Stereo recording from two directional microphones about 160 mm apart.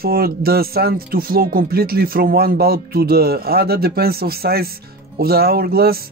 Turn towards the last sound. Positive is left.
turn(degrees=-70)  # may be behind; listen again after turning